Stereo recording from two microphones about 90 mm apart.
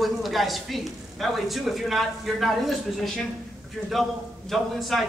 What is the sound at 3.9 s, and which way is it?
Speech, centre (ahead or behind).